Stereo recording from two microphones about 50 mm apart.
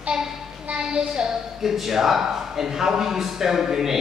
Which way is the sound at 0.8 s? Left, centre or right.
Centre.